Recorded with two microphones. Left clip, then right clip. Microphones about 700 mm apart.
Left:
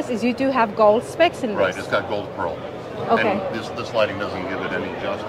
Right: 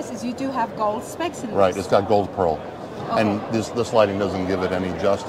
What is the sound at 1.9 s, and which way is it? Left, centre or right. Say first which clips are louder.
Speech: right 5 dB; right.